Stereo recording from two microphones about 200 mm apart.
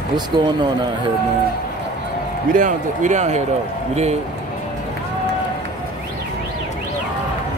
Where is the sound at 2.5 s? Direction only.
40° right (ahead or behind).